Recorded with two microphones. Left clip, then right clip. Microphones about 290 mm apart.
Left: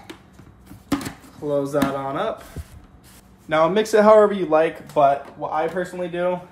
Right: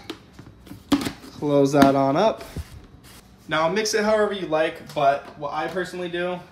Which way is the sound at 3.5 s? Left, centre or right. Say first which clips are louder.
Left 4 dB; centre.